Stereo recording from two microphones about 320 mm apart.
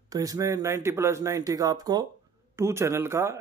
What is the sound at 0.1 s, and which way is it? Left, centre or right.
Speech, centre.